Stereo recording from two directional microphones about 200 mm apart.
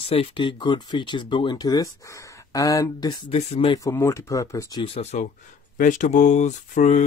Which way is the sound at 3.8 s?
15° left (ahead or behind).